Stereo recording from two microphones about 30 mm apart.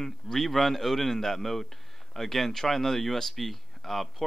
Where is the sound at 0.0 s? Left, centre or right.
Centre.